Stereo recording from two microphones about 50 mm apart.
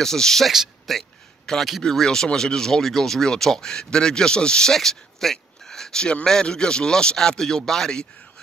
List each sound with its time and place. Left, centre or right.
0.0 s speech: centre